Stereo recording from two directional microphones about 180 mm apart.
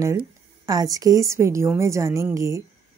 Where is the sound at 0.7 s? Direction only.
20° right (ahead or behind).